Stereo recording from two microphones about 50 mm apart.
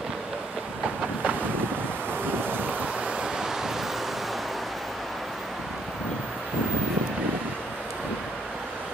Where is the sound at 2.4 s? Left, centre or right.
Right.